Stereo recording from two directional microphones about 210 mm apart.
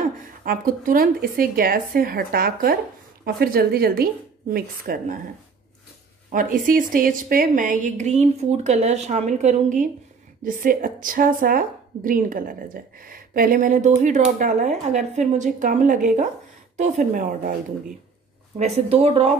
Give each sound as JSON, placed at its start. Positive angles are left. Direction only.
{"t": 0.4, "sound": "speech", "side_deg": -40}
{"t": 6.3, "sound": "a woman's voice", "side_deg": -40}
{"t": 18.9, "sound": "speech", "side_deg": -25}